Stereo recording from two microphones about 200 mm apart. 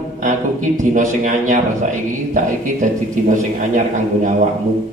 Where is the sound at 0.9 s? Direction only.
40° right (ahead or behind).